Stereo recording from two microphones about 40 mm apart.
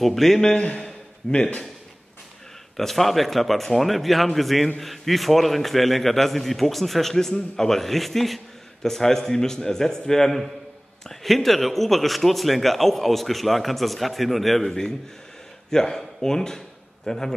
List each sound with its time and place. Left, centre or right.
0.0 s speech: centre
0.4 s a man's voice: left
2.8 s a man's voice: centre
14.7 s a man's voice: centre